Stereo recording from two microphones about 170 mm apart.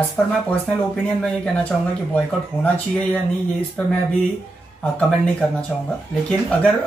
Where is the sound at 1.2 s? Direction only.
5° left (ahead or behind).